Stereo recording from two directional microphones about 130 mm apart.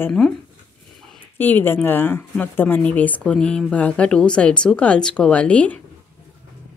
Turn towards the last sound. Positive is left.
turn(degrees=10)  # may be behind; listen again after turning